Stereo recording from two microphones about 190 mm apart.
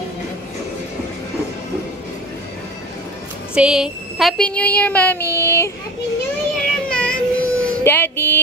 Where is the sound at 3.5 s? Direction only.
5° right (ahead or behind); by 5.7 s 15° left (ahead or behind).